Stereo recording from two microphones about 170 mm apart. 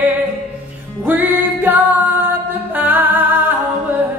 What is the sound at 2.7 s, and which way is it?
Singing, 10° right (ahead or behind).